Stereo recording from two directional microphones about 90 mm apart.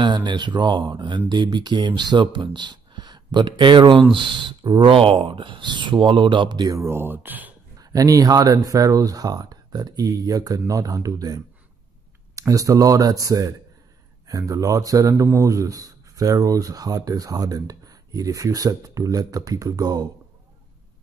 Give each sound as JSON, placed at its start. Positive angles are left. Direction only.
{"t": 0.0, "sound": "speech", "side_deg": -60}
{"t": 6.7, "sound": "speech", "side_deg": -30}
{"t": 7.8, "sound": "speech", "side_deg": -40}